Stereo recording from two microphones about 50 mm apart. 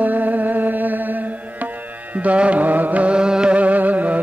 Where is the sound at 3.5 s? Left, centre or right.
Right.